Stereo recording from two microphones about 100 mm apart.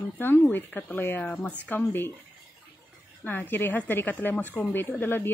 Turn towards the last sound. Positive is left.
turn(degrees=20)  # may be behind; listen again after turning